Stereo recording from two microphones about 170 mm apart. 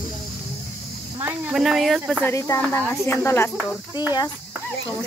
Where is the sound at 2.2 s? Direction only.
20° left (ahead or behind).